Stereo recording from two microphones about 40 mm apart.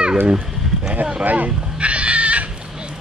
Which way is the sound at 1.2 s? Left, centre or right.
Right.